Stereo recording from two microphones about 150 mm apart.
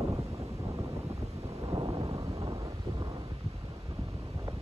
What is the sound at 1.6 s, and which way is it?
Thunder, 30° right (ahead or behind).